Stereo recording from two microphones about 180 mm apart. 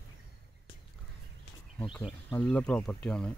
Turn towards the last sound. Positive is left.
turn(degrees=5)  # may be behind; listen again after turning